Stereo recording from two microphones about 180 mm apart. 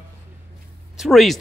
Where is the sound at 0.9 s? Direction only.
Centre (ahead or behind).